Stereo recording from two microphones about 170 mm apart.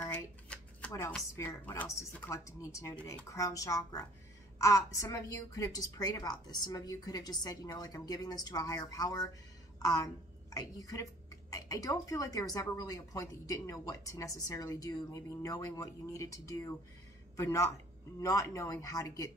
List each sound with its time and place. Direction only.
0.0 s shuffling cards: 10° left (ahead or behind)
1.3 s a woman's voice: 15° left (ahead or behind)